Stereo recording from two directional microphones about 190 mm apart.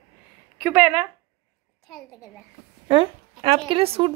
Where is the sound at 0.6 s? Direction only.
10° right (ahead or behind).